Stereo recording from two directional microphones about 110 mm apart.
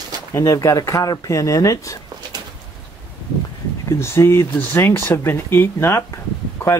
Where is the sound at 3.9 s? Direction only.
25° left (ahead or behind).